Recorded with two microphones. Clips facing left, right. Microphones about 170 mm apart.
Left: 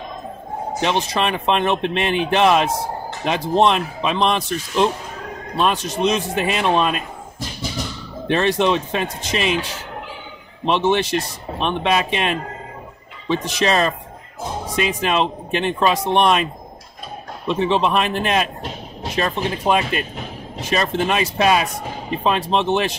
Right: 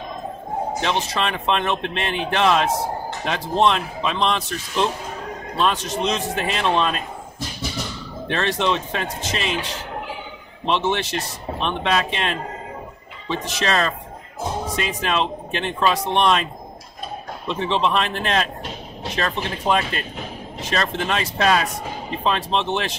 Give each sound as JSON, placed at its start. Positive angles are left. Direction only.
{"t": 0.7, "sound": "speech", "side_deg": 15}
{"t": 8.3, "sound": "speech", "side_deg": 15}
{"t": 10.7, "sound": "speech", "side_deg": 15}
{"t": 13.6, "sound": "speech", "side_deg": 15}
{"t": 17.5, "sound": "speech", "side_deg": 10}